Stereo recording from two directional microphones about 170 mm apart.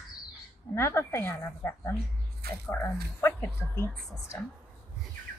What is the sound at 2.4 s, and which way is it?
Speech, 65° right (ahead or behind).